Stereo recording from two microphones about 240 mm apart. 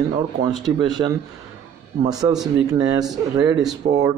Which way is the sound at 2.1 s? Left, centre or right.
Centre.